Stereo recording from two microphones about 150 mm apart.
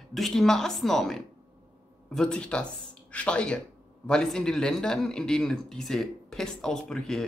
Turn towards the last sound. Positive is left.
turn(degrees=5)  # may be behind; listen again after turning